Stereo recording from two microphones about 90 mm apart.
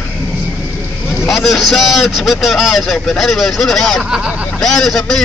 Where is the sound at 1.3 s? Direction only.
Centre (ahead or behind).